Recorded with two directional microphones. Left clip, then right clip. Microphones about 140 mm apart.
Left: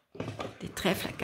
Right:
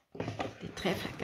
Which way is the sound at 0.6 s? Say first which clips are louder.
Left 6 dB; 50° left (ahead or behind).